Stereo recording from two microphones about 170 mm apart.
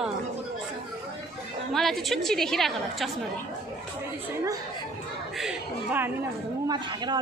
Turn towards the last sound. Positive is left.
turn(degrees=-25)  # may be behind; listen again after turning